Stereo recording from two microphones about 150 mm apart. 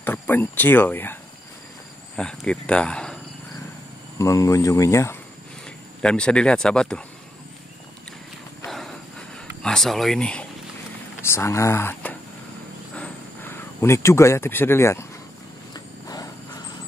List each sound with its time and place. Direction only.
0.0 s speech: 15° left (ahead or behind)
2.1 s speech: 5° left (ahead or behind)
4.2 s speech: 20° left (ahead or behind)
6.0 s speech: 5° left (ahead or behind)
8.6 s a sound: centre (ahead or behind)
9.6 s speech: 5° left (ahead or behind)
11.2 s speech: 20° left (ahead or behind)
12.9 s a sound: 10° left (ahead or behind)
15.7 s vehicle: 25° left (ahead or behind)